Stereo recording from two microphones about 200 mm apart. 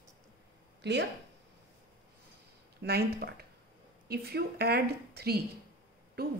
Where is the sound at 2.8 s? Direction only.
50° right (ahead or behind).